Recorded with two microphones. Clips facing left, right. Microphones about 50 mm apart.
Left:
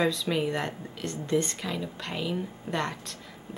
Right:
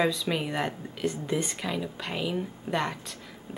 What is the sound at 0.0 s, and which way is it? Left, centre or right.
A woman's voice, centre.